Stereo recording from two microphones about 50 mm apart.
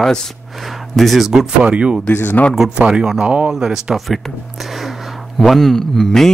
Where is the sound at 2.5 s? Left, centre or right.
Centre.